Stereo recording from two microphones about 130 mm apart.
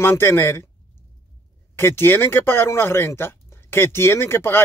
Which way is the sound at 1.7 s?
20° left (ahead or behind).